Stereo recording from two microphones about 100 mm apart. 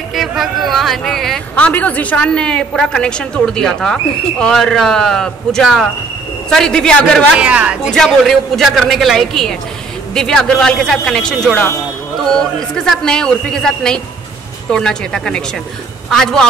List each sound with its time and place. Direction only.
0.1 s speech: centre (ahead or behind)
1.5 s a woman's voice: 15° left (ahead or behind)
7.3 s speech: 10° right (ahead or behind)
7.9 s a woman's voice: 5° left (ahead or behind)